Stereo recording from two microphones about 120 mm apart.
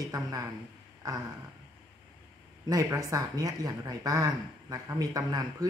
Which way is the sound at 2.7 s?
30° right (ahead or behind).